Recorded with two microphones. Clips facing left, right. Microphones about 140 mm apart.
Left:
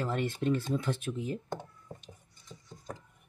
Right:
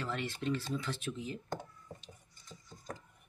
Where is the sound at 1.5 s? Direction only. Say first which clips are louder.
Left 2 dB; 25° left (ahead or behind).